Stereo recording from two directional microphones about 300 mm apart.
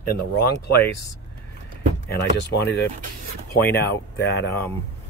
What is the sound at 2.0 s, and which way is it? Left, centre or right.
Speech, left.